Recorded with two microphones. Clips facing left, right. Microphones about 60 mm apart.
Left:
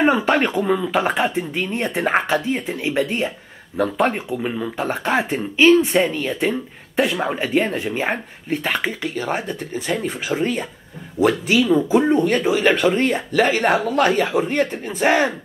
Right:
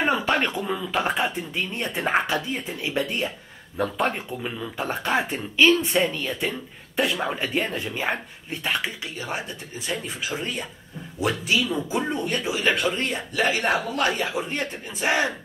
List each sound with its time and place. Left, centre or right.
0.0 s speech: left
5.9 s speech: left
7.2 s speech: centre
7.5 s speech: left
12.4 s speech: left